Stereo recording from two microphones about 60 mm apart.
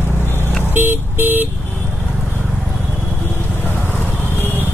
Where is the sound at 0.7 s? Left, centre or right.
Right.